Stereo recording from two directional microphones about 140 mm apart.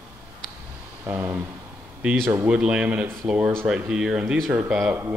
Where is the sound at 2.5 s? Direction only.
5° right (ahead or behind).